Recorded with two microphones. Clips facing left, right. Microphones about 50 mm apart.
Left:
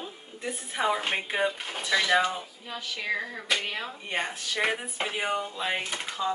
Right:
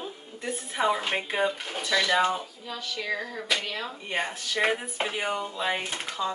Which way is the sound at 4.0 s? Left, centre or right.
Centre.